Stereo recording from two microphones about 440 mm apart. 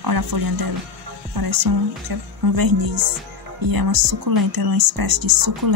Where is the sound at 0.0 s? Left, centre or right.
Right.